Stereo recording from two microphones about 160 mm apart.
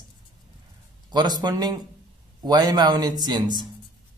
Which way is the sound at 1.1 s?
25° right (ahead or behind).